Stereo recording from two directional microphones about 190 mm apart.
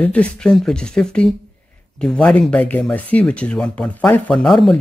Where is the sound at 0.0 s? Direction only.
5° left (ahead or behind).